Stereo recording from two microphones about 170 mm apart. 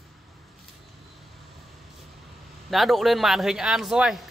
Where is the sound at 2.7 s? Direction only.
Centre (ahead or behind).